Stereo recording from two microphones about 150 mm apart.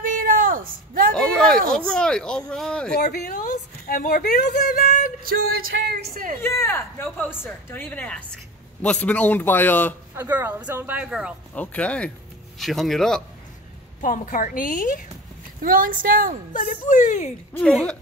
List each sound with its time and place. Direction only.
0.0 s a sound: 70° right (ahead or behind)
1.1 s a sound: 5° left (ahead or behind)
1.9 s speech: 5° left (ahead or behind)
3.0 s speech: 65° left (ahead or behind)
3.8 s speech: 75° left (ahead or behind); by 5.1 s 55° left (ahead or behind)
5.2 s speech: 85° right
6.4 s a man's voice: 15° left (ahead or behind)
10.1 s speech: 15° right (ahead or behind)
11.5 s a man's voice: 10° left (ahead or behind)
14.0 s speech: 65° left (ahead or behind)
15.6 s a woman's voice: 70° right (ahead or behind)
16.5 s speech: 60° left (ahead or behind)
17.6 s a man's voice: 10° left (ahead or behind)